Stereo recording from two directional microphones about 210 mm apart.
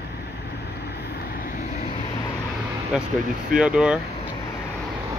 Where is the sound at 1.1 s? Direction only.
45° left (ahead or behind).